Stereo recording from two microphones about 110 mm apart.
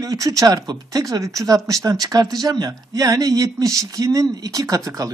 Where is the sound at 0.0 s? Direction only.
30° right (ahead or behind).